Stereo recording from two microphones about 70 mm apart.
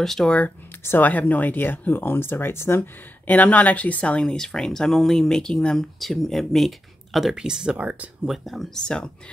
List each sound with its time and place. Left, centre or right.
0.0 s speech: centre
0.8 s speech: left
3.3 s speech: left; by 7.7 s centre
7.7 s speech: right
8.3 s speech: centre